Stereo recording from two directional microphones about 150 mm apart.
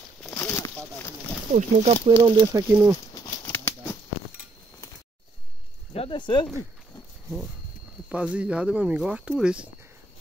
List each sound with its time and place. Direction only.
0.2 s a sound: 10° left (ahead or behind)
1.5 s speech: 50° right (ahead or behind)
2.0 s speech: 25° right (ahead or behind)
3.2 s bird: 25° left (ahead or behind)
3.5 s a sound: 15° left (ahead or behind)
5.9 s speech: 35° left (ahead or behind)
8.1 s speech: 10° right (ahead or behind)